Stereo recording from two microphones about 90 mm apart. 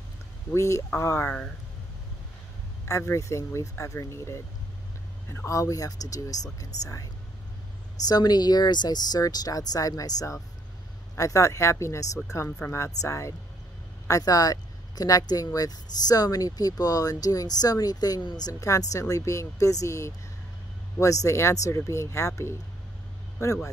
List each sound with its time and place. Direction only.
0.5 s speech: 35° left (ahead or behind)
2.8 s speech: 30° left (ahead or behind)
8.1 s speech: 50° left (ahead or behind)